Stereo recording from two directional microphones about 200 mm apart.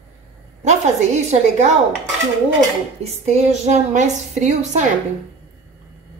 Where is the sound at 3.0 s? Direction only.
30° right (ahead or behind).